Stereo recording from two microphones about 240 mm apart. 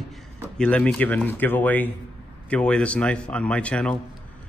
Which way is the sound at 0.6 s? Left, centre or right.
Centre.